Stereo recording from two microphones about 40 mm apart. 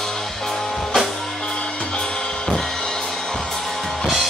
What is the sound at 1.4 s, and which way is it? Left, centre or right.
Music, left.